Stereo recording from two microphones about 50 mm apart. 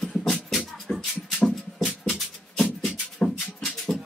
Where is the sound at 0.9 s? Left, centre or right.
Centre.